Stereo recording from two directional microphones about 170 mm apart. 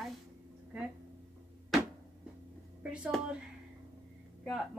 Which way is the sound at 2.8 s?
5° right (ahead or behind).